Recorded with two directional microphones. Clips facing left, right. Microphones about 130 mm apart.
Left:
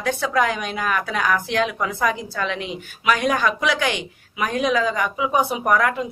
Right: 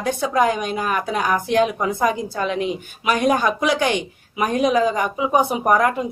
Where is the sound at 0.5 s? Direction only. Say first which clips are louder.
Right 2 dB; 35° right (ahead or behind).